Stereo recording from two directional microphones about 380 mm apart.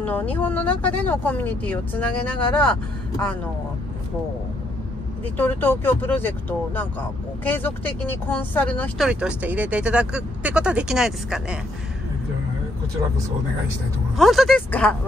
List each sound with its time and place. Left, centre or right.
0.0 s speech: centre
5.4 s speech: centre
14.1 s speech: centre